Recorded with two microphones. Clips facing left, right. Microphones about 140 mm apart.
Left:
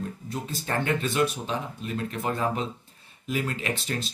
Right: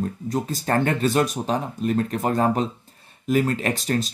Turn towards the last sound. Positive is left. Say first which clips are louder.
# right 7 dB
turn(degrees=-40)  # may be behind; listen again after turning